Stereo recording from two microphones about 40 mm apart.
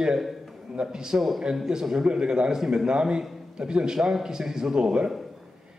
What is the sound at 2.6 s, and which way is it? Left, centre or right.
Speech, centre.